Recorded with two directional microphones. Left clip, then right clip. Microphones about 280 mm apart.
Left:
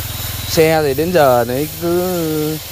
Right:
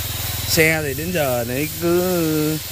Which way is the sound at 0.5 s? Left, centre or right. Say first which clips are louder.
Left 5 dB; centre.